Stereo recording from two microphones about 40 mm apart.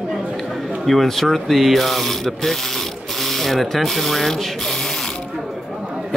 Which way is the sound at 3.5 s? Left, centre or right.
Centre.